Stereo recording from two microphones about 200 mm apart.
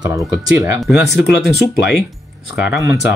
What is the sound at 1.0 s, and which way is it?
Speech, 55° left (ahead or behind).